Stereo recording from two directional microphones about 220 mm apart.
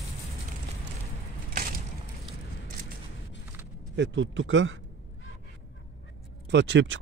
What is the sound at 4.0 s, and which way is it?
Speech, 55° right (ahead or behind).